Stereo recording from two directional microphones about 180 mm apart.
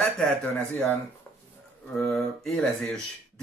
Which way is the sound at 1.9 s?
5° left (ahead or behind).